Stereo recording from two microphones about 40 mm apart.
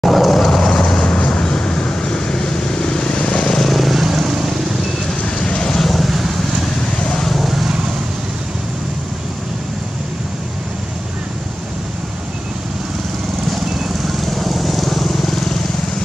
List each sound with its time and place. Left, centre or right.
0.0 s vehicle: centre
3.6 s vehicle: centre
5.2 s vehicle: left
5.8 s vehicle: centre
7.1 s vehicle: centre
7.3 s vehicle: centre
13.5 s vehicle: centre